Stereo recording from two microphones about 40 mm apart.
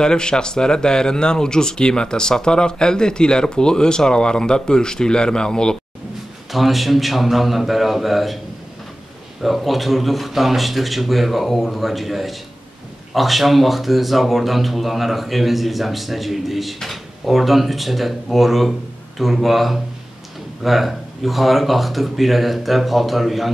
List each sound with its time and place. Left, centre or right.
0.0 s speech: centre
6.5 s speech: centre
9.4 s speech: centre